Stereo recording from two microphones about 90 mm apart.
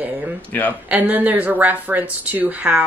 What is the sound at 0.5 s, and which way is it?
Speech, 20° left (ahead or behind).